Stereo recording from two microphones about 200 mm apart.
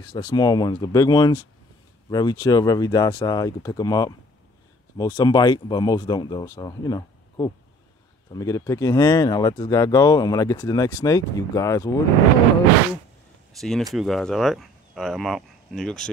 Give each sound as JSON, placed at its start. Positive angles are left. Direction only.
{"t": 0.1, "sound": "speech", "side_deg": 20}
{"t": 13.6, "sound": "speech", "side_deg": 0}